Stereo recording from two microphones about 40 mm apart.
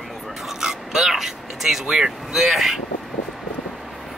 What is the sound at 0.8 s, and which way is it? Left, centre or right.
Speech, centre.